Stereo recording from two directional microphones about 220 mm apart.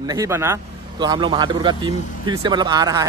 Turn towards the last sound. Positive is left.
turn(degrees=-15)  # may be behind; listen again after turning